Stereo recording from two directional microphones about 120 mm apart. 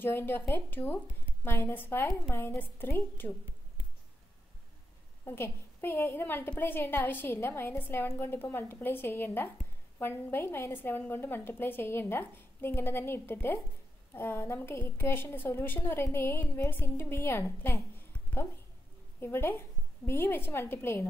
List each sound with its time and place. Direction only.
0.0 s a woman's voice: 15° left (ahead or behind)
5.2 s a woman's voice: 20° left (ahead or behind)
19.1 s a woman's voice: 20° left (ahead or behind)